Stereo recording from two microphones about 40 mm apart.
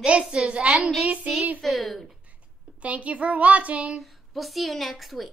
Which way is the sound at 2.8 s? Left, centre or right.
Right.